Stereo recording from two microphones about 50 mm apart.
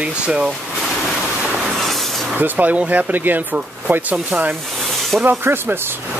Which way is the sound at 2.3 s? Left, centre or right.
Right.